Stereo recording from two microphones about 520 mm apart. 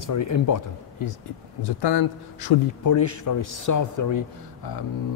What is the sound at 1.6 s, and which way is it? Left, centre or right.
A man's voice, left.